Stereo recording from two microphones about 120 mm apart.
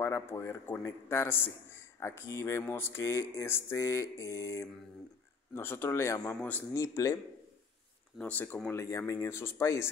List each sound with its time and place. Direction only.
0.0 s speech: 25° left (ahead or behind)
8.2 s speech: 15° left (ahead or behind)
8.6 s speech: 25° left (ahead or behind)